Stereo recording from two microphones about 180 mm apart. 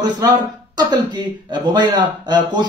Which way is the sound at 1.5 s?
25° right (ahead or behind).